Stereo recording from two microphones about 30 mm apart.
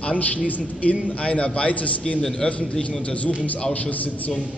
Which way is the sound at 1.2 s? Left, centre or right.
Left.